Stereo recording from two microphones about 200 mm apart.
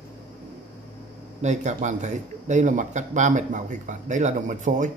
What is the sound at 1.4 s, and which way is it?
A man's voice, 35° right (ahead or behind).